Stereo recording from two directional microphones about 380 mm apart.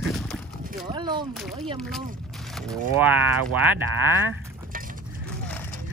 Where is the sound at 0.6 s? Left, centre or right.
Centre.